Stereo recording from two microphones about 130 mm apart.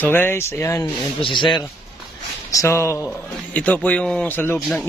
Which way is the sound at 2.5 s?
25° left (ahead or behind).